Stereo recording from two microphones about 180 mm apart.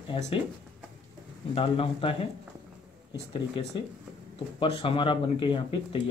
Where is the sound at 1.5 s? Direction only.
30° left (ahead or behind).